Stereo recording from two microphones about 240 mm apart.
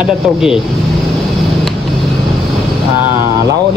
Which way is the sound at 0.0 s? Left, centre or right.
Centre.